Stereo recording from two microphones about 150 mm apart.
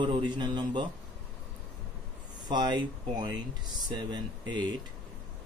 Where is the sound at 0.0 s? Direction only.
35° right (ahead or behind).